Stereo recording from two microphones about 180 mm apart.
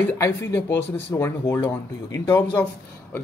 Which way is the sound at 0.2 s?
15° left (ahead or behind).